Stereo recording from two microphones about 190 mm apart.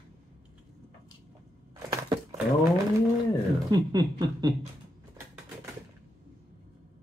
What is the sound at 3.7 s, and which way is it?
Speech, 20° right (ahead or behind).